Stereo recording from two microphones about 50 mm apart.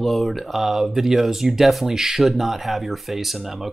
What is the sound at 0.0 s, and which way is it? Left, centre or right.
Speech, centre.